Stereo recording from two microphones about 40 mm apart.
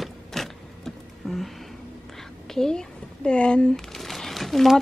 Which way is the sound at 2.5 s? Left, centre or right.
Centre.